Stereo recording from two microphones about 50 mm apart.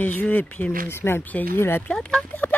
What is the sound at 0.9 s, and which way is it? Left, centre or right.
Speech, left.